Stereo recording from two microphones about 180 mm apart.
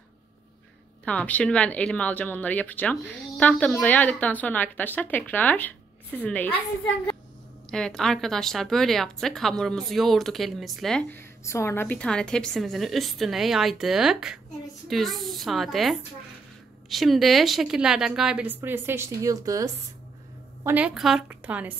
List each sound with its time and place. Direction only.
1.0 s speech: 10° left (ahead or behind)
7.7 s a woman's voice: 5° left (ahead or behind)
11.4 s a woman's voice: 15° left (ahead or behind); by 19.7 s 20° right (ahead or behind)
20.6 s a woman's voice: 10° right (ahead or behind)